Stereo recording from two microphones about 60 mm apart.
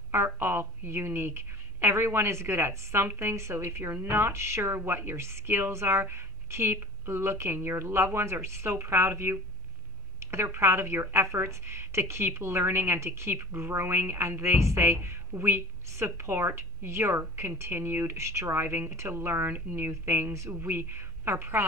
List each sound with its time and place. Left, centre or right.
0.1 s a woman's voice: right